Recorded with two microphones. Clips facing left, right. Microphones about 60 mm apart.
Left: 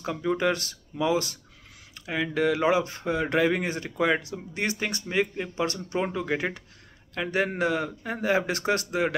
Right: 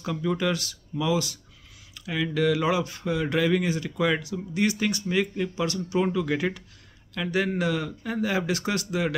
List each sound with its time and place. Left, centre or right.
0.0 s speech: left
0.5 s speech: left
2.0 s speech: left
5.0 s speech: left